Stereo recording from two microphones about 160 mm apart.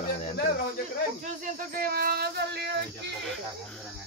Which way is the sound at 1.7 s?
65° right (ahead or behind).